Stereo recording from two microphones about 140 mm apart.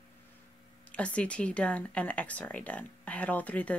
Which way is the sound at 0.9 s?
10° left (ahead or behind).